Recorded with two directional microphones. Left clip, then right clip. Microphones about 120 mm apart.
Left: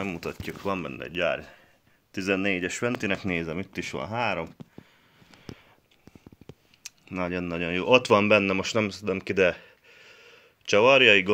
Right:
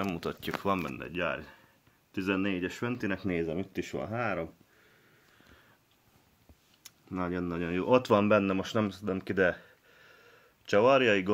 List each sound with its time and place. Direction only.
0.0 s speech: 5° right (ahead or behind); by 2.9 s 20° left (ahead or behind)
3.0 s speech: 40° left (ahead or behind)
3.3 s speech: 65° left (ahead or behind)
6.8 s speech: 15° left (ahead or behind)